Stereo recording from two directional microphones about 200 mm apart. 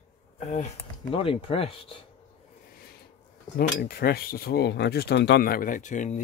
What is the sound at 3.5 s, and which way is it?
Speech, 50° left (ahead or behind).